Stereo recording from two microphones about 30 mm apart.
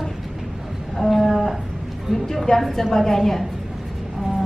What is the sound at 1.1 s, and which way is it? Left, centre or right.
A woman's voice, centre.